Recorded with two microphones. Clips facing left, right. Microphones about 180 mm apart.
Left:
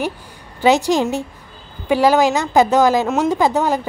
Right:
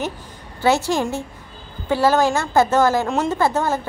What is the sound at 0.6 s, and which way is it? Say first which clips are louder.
A woman's voice: left 4 dB; 15° left (ahead or behind).